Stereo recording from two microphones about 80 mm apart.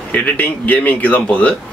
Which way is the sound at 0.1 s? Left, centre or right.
Centre.